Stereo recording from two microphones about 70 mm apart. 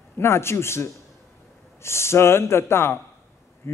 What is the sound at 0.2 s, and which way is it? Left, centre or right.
Speech, left.